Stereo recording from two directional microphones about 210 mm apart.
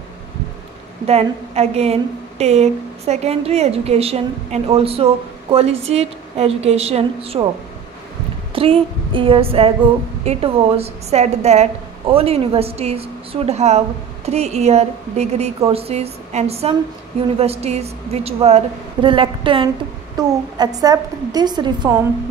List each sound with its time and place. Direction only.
1.0 s a woman's voice: 30° right (ahead or behind)
8.5 s a woman's voice: 25° right (ahead or behind)